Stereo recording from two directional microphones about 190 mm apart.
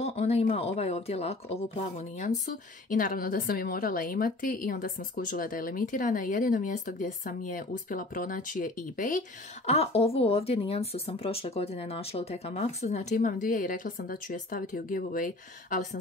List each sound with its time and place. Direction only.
0.0 s a woman's voice: 35° left (ahead or behind)
9.7 s speech: 30° left (ahead or behind)